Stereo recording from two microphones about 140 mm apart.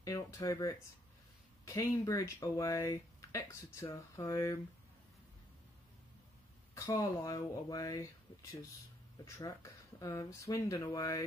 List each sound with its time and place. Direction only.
0.0 s speech: 25° left (ahead or behind)
6.7 s speech: 25° left (ahead or behind)